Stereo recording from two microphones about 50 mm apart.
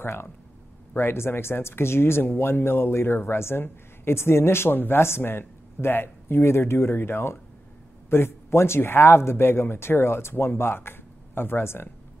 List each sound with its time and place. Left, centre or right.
0.0 s speech: left